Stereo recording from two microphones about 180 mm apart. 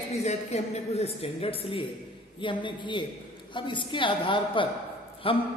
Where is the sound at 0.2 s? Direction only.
35° left (ahead or behind).